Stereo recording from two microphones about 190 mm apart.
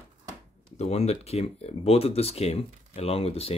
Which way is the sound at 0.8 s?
35° left (ahead or behind).